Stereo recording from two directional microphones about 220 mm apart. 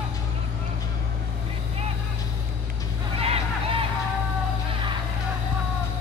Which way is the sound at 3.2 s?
25° right (ahead or behind).